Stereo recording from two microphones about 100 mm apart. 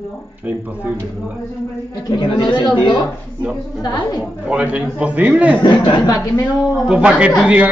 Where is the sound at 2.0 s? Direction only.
45° left (ahead or behind).